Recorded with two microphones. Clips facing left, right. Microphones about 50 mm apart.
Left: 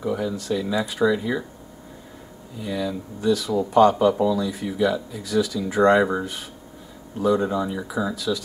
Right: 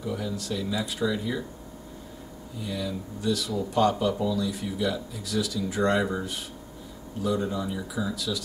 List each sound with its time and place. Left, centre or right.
0.0 s speech: centre
2.6 s speech: centre